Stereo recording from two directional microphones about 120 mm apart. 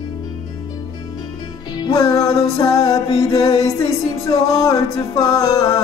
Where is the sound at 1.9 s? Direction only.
25° left (ahead or behind).